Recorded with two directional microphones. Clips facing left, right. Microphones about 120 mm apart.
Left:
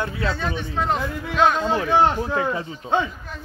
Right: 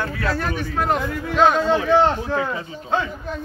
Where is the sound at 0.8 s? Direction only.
5° right (ahead or behind).